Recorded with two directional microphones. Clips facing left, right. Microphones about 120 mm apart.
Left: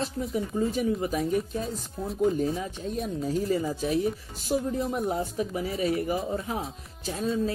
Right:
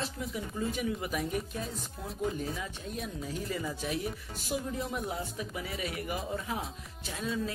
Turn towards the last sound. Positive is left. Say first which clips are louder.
# left 7 dB
turn(degrees=35)  # may be behind; listen again after turning